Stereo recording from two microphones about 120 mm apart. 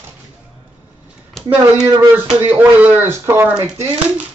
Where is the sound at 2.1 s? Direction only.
15° right (ahead or behind).